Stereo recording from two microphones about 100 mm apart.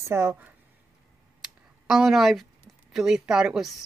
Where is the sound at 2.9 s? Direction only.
5° right (ahead or behind).